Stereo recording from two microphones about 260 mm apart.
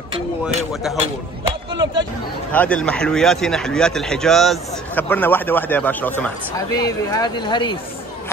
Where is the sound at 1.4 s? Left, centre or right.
Centre.